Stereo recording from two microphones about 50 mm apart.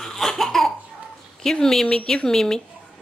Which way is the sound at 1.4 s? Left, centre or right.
Centre.